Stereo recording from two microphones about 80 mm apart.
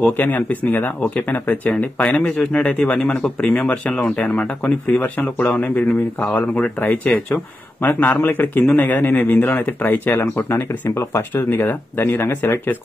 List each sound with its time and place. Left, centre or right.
0.0 s speech: left
10.5 s speech: left